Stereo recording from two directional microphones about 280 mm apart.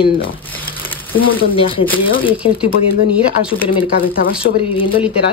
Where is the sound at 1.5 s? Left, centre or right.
Centre.